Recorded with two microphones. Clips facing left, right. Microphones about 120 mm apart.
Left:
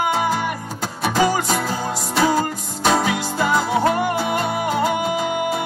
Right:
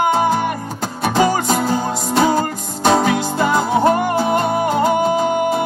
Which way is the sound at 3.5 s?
30° right (ahead or behind).